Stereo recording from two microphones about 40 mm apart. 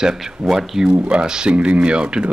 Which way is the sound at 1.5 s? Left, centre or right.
Right.